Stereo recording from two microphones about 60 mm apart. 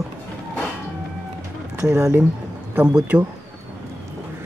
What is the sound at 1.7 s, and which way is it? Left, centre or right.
Speech, right.